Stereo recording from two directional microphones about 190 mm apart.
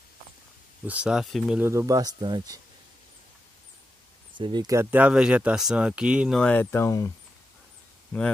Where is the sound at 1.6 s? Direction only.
15° right (ahead or behind).